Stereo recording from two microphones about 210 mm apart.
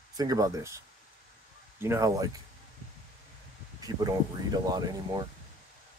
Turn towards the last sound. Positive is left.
turn(degrees=-20)  # may be behind; listen again after turning